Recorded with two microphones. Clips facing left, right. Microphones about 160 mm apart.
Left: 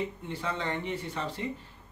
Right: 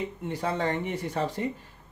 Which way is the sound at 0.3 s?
40° right (ahead or behind).